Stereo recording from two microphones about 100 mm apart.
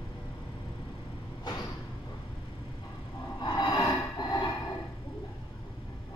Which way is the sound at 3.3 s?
45° left (ahead or behind).